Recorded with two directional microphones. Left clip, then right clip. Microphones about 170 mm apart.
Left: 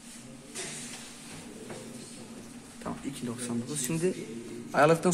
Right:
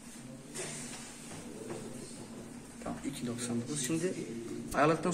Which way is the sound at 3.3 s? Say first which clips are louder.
Left 2 dB; 60° left (ahead or behind).